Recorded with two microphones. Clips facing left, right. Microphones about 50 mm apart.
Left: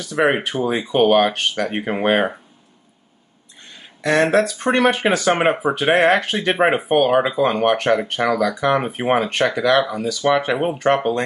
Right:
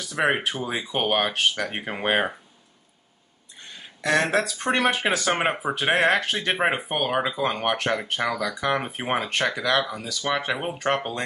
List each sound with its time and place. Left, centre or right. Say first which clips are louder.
0.1 s speech: left 5 dB; centre
4.0 s speech: left 5 dB; centre
4.3 s speech: left 6 dB; centre